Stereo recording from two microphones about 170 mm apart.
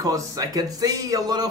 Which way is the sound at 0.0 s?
20° right (ahead or behind).